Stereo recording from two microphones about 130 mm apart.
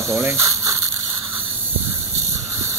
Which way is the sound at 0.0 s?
20° right (ahead or behind).